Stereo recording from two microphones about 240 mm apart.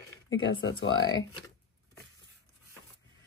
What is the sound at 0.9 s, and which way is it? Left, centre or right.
Speech, centre.